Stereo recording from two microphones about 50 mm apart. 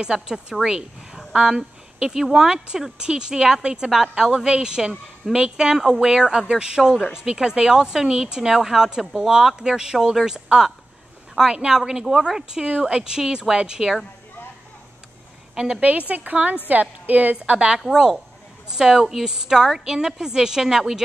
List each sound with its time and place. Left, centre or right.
0.0 s speech: centre
15.5 s a woman's voice: centre
16.1 s a woman's voice: right
17.6 s speech: centre